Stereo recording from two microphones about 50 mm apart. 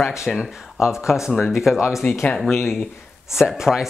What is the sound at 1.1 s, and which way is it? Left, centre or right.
Speech, centre.